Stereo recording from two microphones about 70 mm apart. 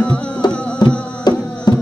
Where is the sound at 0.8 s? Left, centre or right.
Left.